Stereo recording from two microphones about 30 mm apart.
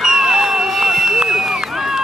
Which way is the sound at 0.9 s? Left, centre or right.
Centre.